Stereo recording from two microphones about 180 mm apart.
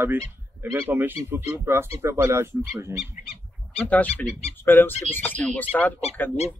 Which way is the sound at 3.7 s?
10° left (ahead or behind).